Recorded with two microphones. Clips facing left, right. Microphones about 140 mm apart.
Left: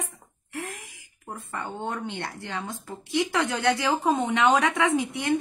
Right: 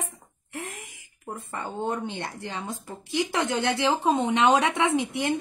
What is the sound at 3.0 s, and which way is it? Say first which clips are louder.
Speech: left 2 dB; 20° left (ahead or behind).